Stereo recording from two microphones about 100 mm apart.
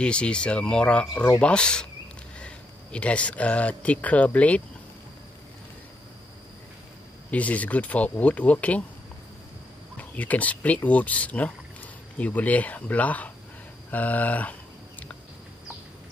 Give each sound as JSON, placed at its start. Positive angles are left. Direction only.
{"t": 0.0, "sound": "speech", "side_deg": 10}
{"t": 7.2, "sound": "speech", "side_deg": 15}
{"t": 9.9, "sound": "speech", "side_deg": 15}